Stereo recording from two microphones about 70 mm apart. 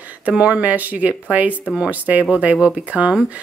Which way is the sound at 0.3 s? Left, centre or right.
Centre.